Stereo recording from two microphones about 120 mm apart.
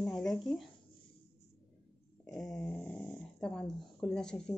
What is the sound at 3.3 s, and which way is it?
Speech, 5° left (ahead or behind).